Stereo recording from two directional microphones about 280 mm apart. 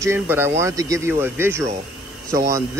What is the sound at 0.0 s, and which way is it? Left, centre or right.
Speech, centre.